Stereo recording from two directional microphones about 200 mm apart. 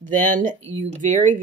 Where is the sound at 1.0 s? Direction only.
40° right (ahead or behind).